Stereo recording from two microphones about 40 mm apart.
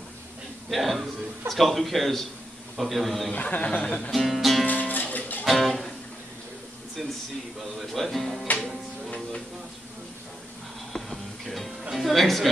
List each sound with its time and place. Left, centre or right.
0.7 s speech: centre
3.3 s speech: left
4.1 s music: centre
4.6 s music: left
5.4 s music: centre
7.9 s speech: centre
10.9 s music: centre
11.9 s speech: centre